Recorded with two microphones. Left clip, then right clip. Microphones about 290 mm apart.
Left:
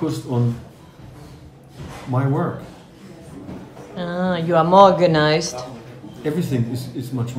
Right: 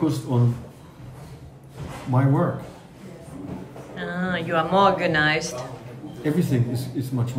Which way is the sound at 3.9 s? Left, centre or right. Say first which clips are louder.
Left 4 dB; centre.